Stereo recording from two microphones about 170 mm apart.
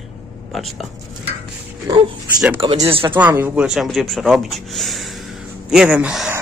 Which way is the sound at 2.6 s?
35° right (ahead or behind).